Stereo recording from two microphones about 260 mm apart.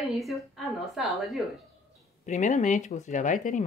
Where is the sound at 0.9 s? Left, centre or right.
Centre.